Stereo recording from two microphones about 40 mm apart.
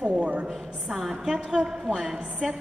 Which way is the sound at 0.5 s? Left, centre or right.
Centre.